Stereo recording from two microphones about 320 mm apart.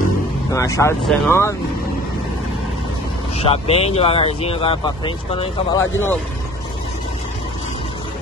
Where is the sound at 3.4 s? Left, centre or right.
Centre.